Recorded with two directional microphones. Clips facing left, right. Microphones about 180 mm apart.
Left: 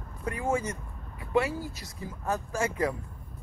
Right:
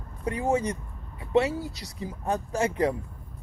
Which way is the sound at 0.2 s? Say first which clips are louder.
Right 4 dB; 20° right (ahead or behind).